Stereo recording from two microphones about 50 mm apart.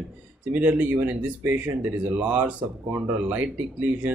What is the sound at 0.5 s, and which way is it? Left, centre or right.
Speech, right.